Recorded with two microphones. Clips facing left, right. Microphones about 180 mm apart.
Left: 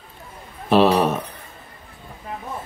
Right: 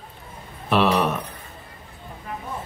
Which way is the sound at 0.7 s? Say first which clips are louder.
Left 4 dB; 30° left (ahead or behind).